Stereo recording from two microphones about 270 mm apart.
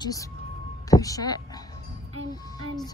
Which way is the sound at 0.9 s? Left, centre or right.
Centre.